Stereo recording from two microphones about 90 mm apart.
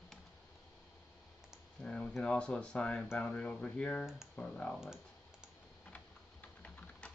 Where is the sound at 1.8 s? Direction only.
15° left (ahead or behind).